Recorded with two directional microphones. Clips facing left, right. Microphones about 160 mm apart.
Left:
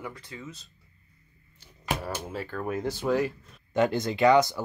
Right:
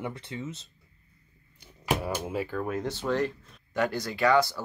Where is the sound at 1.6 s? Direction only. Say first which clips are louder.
Right 3 dB; 15° right (ahead or behind).